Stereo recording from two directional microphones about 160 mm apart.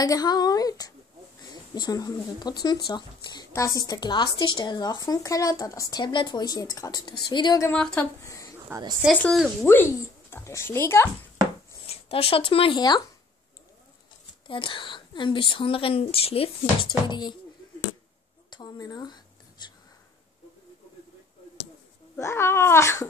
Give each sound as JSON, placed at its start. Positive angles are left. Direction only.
{"t": 0.0, "sound": "speech", "side_deg": 25}
{"t": 7.6, "sound": "a child's voice", "side_deg": 5}
{"t": 8.2, "sound": "a sound", "side_deg": 20}
{"t": 8.6, "sound": "speech", "side_deg": -20}
{"t": 9.1, "sound": "a child's voice", "side_deg": 5}
{"t": 11.8, "sound": "speech", "side_deg": 35}
{"t": 14.5, "sound": "speech", "side_deg": 30}
{"t": 18.5, "sound": "a sound", "side_deg": 25}
{"t": 22.1, "sound": "a child's voice", "side_deg": 15}